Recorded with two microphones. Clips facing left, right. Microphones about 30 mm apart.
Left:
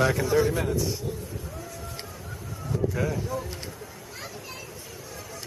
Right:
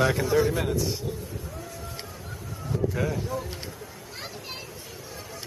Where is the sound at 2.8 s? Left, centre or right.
Centre.